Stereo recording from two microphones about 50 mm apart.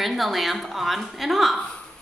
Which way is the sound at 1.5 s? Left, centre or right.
Left.